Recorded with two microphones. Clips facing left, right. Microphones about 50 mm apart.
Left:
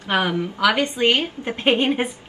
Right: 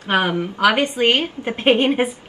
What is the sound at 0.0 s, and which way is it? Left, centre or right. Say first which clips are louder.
A woman's voice: right 2 dB; right.